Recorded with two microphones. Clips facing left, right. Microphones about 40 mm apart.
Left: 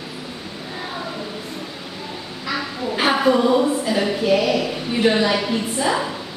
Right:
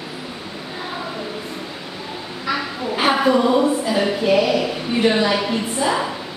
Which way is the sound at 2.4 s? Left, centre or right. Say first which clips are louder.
Right 2 dB; centre.